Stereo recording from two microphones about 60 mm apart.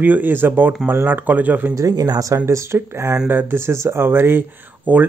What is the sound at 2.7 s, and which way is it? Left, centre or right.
Speech, right.